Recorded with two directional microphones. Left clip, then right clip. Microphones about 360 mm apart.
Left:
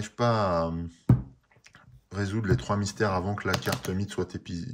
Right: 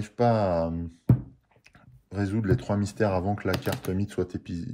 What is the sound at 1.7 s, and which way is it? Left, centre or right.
Speech, centre.